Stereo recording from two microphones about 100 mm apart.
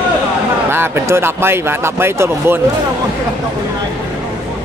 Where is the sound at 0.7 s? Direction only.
25° right (ahead or behind).